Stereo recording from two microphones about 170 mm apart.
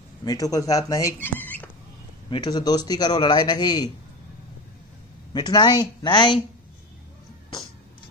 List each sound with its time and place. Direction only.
0.2 s speech: 20° left (ahead or behind)
2.2 s a man's voice: 25° left (ahead or behind)
5.3 s a man's voice: 25° left (ahead or behind)